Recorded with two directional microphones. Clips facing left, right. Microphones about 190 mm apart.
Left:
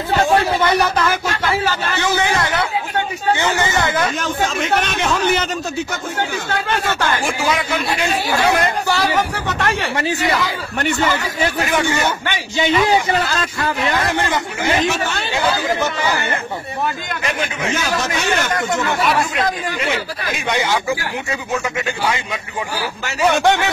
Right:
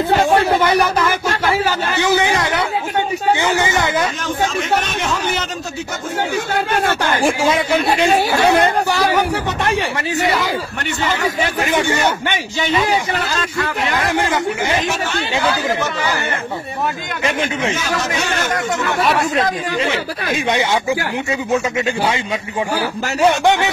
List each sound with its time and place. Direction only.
2.0 s speech: 15° right (ahead or behind)
7.2 s speech: 30° right (ahead or behind)
19.3 s speech: 30° right (ahead or behind)
23.2 s speech: 15° right (ahead or behind)